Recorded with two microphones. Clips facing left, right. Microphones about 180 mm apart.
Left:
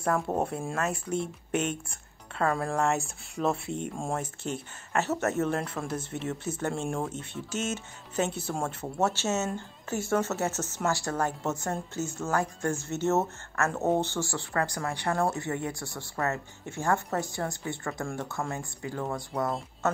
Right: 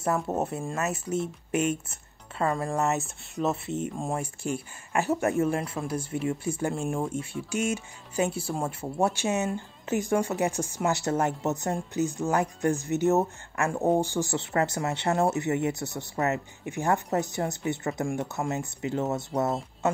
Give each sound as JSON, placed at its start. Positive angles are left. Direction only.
{"t": 0.0, "sound": "speech", "side_deg": -5}